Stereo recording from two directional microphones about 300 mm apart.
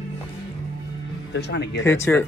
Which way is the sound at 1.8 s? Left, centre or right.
Centre.